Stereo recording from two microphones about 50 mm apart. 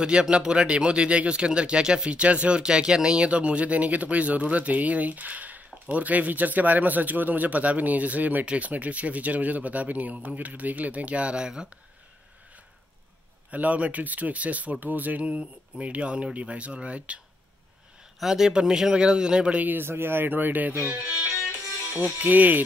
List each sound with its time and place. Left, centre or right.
0.0 s speech: centre
13.5 s speech: right
18.2 s speech: centre
19.6 s speech: right
19.9 s speech: right